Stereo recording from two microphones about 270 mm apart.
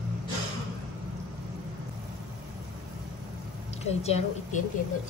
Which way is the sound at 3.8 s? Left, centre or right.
Left.